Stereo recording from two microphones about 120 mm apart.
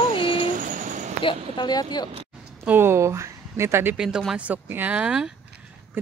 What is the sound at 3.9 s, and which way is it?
Speech, 5° right (ahead or behind).